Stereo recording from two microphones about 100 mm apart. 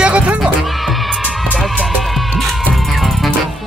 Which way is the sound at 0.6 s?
Centre (ahead or behind).